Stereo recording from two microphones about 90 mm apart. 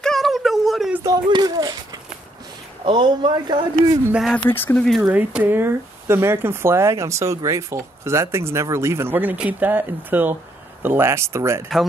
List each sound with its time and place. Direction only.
0.0 s a sound: 5° left (ahead or behind)
1.3 s a sound: 50° right (ahead or behind)
2.8 s a man's voice: 55° right (ahead or behind)
4.5 s speech: 25° left (ahead or behind)
4.8 s speech: centre (ahead or behind)
5.1 s speech: 20° right (ahead or behind)